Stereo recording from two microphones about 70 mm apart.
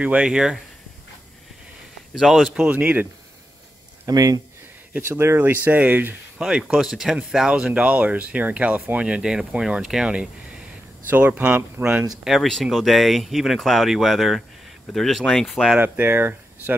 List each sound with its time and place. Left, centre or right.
0.0 s speech: centre
2.1 s speech: centre
2.7 s speech: right
4.1 s speech: right
5.0 s speech: right
6.4 s speech: centre
12.3 s speech: centre
15.8 s speech: right